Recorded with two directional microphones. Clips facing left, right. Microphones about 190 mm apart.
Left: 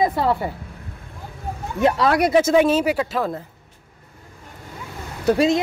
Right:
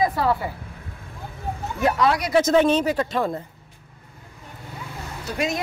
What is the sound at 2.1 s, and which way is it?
Speech, 55° left (ahead or behind).